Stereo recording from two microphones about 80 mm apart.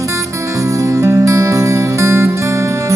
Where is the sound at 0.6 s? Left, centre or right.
Right.